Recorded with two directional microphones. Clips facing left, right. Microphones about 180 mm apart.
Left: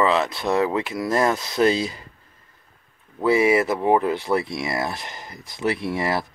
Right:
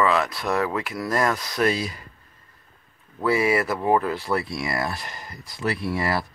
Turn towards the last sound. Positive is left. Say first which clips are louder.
# left 1 dB
turn(degrees=20)  # may be behind; listen again after turning